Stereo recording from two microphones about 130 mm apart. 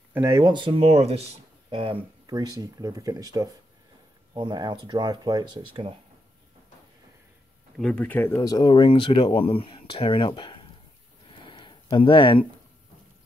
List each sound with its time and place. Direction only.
0.1 s speech: 25° right (ahead or behind); by 2.0 s 40° right (ahead or behind)
2.2 s speech: 30° right (ahead or behind)
7.7 s speech: 5° left (ahead or behind)
8.4 s speech: 30° left (ahead or behind)
11.4 s a sound: 40° left (ahead or behind)
11.9 s speech: 40° left (ahead or behind)